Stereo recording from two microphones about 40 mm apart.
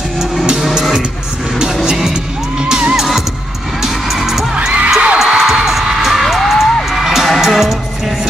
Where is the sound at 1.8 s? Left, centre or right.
Centre.